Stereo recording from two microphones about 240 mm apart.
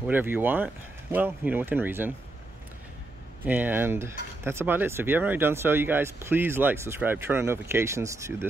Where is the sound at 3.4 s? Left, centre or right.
Centre.